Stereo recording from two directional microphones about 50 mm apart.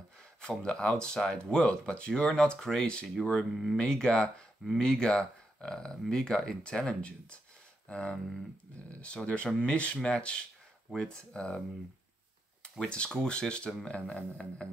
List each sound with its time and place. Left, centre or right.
0.4 s speech: centre
12.9 s speech: centre